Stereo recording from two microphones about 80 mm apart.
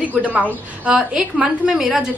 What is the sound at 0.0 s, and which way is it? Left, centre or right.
Speech, centre.